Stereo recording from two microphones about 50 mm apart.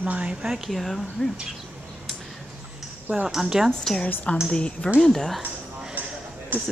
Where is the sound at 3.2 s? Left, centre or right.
Centre.